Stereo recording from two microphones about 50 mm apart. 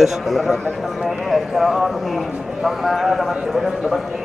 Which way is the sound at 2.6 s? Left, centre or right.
Centre.